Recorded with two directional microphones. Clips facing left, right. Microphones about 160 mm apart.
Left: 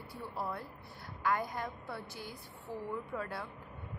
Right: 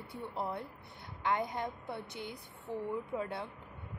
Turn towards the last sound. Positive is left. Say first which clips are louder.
# right 2 dB
turn(degrees=-20)  # may be behind; listen again after turning